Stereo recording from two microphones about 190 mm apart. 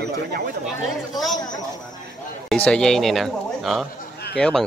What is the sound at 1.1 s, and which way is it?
Speech, centre (ahead or behind).